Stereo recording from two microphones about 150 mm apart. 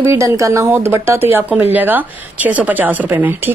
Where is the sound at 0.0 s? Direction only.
15° right (ahead or behind).